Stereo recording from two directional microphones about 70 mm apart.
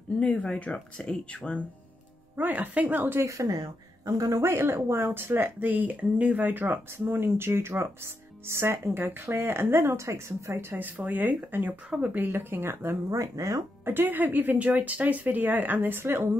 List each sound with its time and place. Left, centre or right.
0.2 s speech: centre
2.3 s a woman's voice: right
3.3 s speech: right
3.5 s a woman's voice: right
4.3 s speech: right
13.1 s speech: right
13.8 s a woman's voice: right